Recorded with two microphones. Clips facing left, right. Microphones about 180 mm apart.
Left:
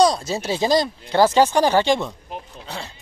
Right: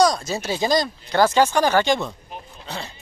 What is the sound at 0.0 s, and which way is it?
Speech, 30° left (ahead or behind).